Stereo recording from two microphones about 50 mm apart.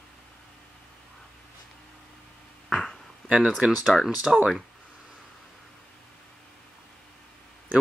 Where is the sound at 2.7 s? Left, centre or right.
Centre.